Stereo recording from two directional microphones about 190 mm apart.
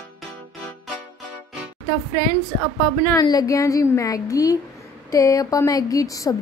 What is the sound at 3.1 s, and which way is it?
A woman's voice, 20° left (ahead or behind).